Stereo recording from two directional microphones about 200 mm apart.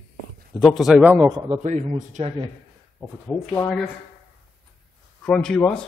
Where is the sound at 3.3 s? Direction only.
10° left (ahead or behind).